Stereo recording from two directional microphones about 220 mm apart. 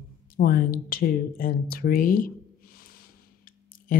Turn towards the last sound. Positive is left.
turn(degrees=40)  # may be behind; listen again after turning